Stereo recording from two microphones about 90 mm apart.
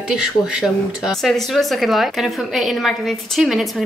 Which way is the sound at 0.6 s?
5° right (ahead or behind).